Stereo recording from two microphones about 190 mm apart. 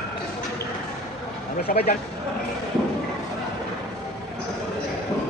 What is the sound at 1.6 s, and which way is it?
Speech, 55° left (ahead or behind).